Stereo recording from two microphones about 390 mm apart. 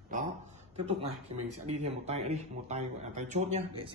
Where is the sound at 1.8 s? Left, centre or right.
Centre.